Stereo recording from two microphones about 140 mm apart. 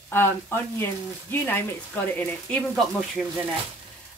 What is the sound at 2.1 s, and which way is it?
A woman's voice, 5° left (ahead or behind).